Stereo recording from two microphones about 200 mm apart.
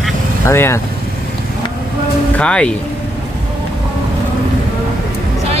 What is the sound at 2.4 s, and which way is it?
Speech, 5° left (ahead or behind).